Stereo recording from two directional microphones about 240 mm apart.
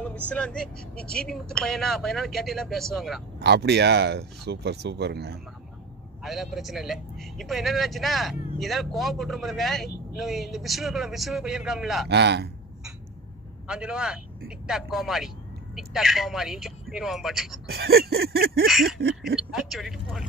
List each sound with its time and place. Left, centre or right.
0.0 s a man's voice: centre
3.3 s speech: right
6.2 s a man's voice: centre
12.1 s speech: right
13.7 s a man's voice: centre
17.6 s a sound: right
18.7 s a man's voice: centre
18.9 s speech: right
19.5 s a man's voice: centre